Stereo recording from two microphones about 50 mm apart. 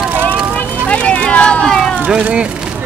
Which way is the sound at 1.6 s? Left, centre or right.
Centre.